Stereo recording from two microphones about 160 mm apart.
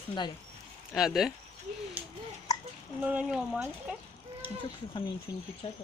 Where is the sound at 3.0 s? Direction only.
5° right (ahead or behind).